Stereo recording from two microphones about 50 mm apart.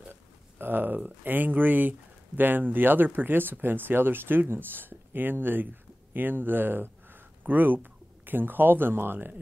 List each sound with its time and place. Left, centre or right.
0.1 s speech: right